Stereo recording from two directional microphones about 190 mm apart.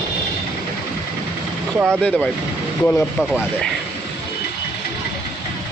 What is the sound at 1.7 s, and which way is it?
Speech, 15° right (ahead or behind).